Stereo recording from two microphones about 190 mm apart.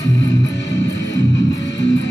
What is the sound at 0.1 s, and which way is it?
Music, 70° left (ahead or behind).